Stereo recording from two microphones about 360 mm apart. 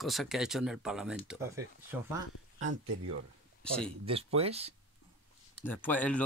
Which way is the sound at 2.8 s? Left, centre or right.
Right.